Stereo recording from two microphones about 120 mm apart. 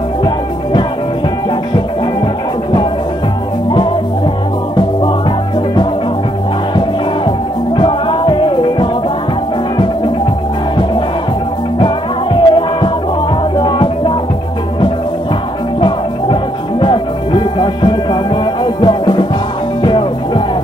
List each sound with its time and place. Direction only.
7.2 s music: 40° left (ahead or behind)
11.8 s music: 45° left (ahead or behind)
16.8 s music: 40° left (ahead or behind)